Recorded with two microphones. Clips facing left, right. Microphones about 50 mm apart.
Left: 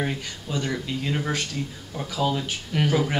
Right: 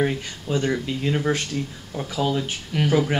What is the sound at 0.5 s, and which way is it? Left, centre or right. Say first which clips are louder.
Speech: right 5 dB; right.